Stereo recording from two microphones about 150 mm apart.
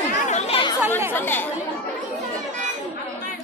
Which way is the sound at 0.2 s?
50° left (ahead or behind).